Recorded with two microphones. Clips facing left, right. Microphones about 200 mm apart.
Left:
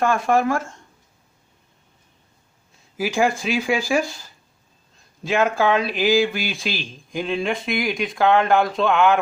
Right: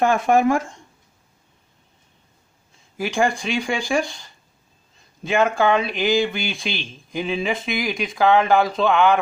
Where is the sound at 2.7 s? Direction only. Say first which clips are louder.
Left 1 dB; centre (ahead or behind).